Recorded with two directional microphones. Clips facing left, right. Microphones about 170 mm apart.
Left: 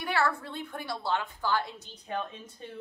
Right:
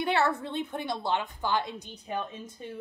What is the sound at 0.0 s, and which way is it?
A woman's voice, 20° right (ahead or behind).